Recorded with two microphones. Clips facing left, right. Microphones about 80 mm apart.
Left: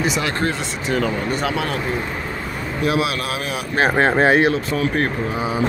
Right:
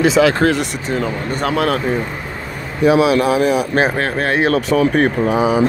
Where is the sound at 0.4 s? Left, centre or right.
Right.